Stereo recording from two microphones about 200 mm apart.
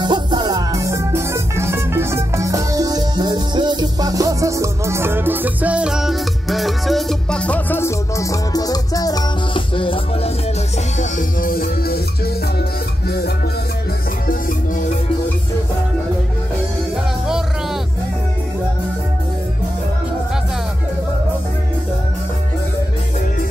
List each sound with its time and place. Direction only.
0.0 s music: 20° right (ahead or behind); by 10.3 s 25° left (ahead or behind)
11.0 s music: 45° left (ahead or behind)